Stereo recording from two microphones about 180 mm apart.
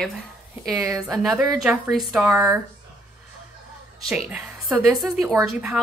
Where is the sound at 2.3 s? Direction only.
15° right (ahead or behind).